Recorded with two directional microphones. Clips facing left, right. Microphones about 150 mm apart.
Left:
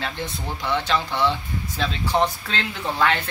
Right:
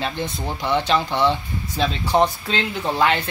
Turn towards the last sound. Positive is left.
turn(degrees=-20)  # may be behind; listen again after turning